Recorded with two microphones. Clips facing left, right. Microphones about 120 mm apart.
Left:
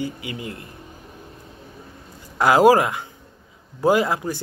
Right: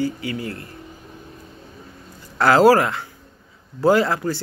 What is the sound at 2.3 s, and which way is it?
Speech, 15° left (ahead or behind).